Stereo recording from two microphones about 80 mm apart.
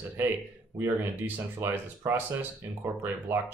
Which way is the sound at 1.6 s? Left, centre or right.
Right.